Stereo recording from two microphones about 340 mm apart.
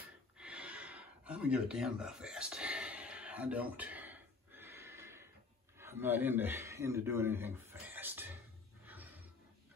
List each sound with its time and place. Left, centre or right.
0.4 s gasp: centre
5.8 s speech: centre
8.8 s a sound: centre